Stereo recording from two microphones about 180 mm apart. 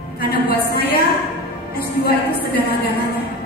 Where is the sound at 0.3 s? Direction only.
60° left (ahead or behind).